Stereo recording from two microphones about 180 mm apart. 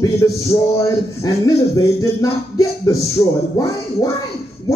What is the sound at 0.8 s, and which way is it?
A man's voice, 20° left (ahead or behind).